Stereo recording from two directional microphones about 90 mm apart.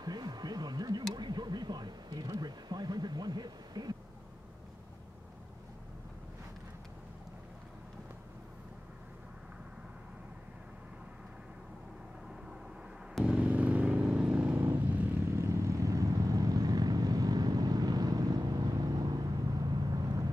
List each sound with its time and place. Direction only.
0.0 s speech: 50° right (ahead or behind)
1.1 s a sound: 55° right (ahead or behind)
13.2 s vehicle: 15° right (ahead or behind)
15.2 s vehicle: 30° right (ahead or behind)